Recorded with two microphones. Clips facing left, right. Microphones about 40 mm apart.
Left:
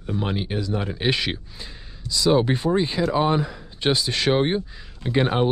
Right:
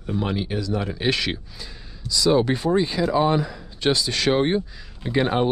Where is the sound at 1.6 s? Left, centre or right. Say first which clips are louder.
Even; left.